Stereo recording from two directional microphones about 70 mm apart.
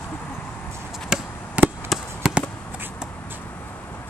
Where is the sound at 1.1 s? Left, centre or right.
Centre.